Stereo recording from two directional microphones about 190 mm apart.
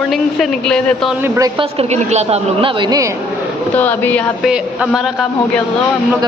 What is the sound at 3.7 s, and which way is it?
Speech, 10° left (ahead or behind).